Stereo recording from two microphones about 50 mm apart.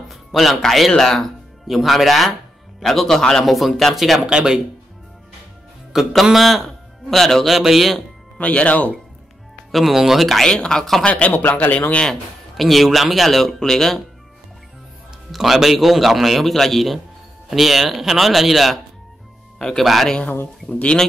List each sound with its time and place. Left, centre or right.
0.1 s a man's voice: centre
4.2 s speech: centre
5.9 s a man's voice: centre
8.4 s speech: left
9.7 s speech: centre
10.4 s speech: centre
11.1 s speech: left
12.1 s speech: centre
15.3 s speech: centre
19.8 s speech: centre
20.6 s speech: centre